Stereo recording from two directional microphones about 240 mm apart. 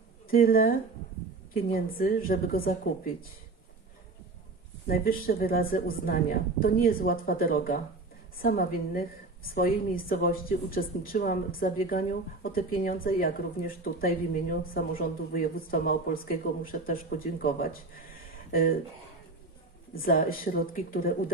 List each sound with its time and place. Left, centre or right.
0.3 s a woman's voice: left
4.8 s a woman's voice: left
20.0 s a woman's voice: left